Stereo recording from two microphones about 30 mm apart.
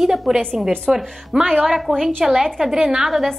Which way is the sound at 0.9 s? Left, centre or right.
Centre.